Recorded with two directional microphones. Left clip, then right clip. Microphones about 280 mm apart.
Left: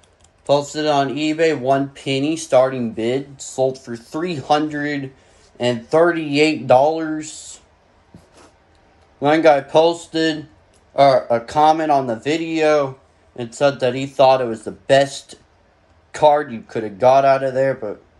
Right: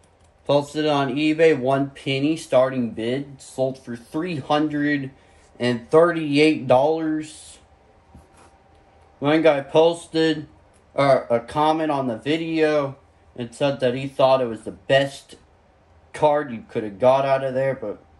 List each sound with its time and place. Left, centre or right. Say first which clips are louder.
0.5 s speech: left 3 dB; centre
9.2 s speech: left 4 dB; centre